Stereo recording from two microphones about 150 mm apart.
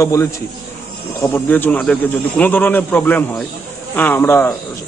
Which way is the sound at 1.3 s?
10° left (ahead or behind).